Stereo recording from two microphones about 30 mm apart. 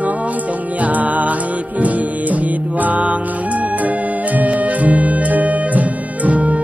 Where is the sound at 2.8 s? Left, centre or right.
Right.